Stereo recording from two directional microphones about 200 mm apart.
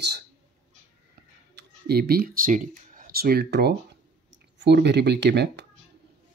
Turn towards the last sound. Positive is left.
turn(degrees=-55)  # may be behind; listen again after turning